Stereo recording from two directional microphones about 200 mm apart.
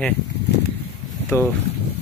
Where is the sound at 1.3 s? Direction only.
15° left (ahead or behind).